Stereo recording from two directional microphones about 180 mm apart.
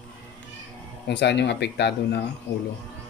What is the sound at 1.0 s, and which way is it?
Speech, 75° left (ahead or behind).